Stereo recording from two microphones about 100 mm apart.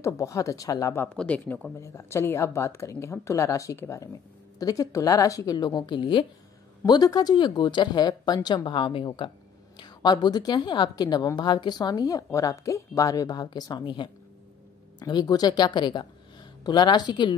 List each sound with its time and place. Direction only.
0.0 s a woman's voice: 30° left (ahead or behind)
1.0 s speech: 10° left (ahead or behind)
1.8 s speech: 25° left (ahead or behind)
4.6 s a woman's voice: 35° left (ahead or behind); by 6.2 s 55° left (ahead or behind)
6.9 s a woman's voice: 40° left (ahead or behind)